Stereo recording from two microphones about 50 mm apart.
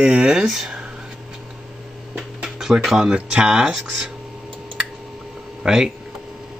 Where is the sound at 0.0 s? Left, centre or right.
Right.